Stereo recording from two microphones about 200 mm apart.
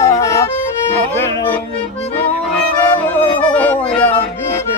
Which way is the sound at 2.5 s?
10° left (ahead or behind).